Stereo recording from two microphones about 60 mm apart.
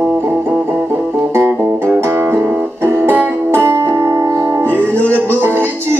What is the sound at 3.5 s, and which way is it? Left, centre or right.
Music, right.